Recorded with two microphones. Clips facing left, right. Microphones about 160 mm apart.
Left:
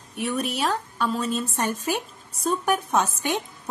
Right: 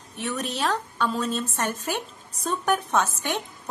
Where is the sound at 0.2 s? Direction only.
10° left (ahead or behind).